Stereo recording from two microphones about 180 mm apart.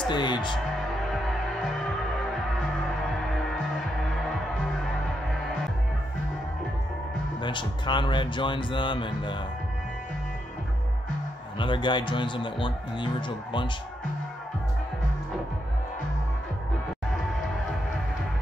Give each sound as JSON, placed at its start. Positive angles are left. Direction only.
{"t": 0.1, "sound": "a man's voice", "side_deg": 25}
{"t": 1.0, "sound": "music", "side_deg": 0}
{"t": 7.4, "sound": "a man's voice", "side_deg": 25}
{"t": 11.5, "sound": "a man's voice", "side_deg": 25}